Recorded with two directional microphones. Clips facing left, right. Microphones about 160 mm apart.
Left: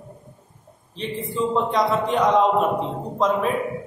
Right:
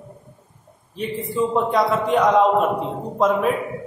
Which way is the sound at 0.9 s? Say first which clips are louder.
Right 3 dB; 5° right (ahead or behind).